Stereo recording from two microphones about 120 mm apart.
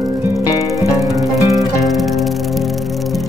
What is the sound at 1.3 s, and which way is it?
Music, centre (ahead or behind).